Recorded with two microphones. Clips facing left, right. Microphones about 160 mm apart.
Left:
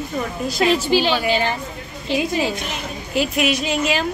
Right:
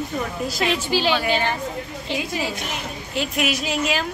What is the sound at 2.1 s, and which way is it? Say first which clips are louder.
Speech: left 6 dB; 20° right (ahead or behind).